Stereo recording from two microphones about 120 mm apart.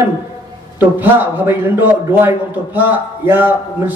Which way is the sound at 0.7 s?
15° right (ahead or behind).